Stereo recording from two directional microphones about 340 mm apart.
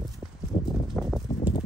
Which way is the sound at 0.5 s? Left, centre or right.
Centre.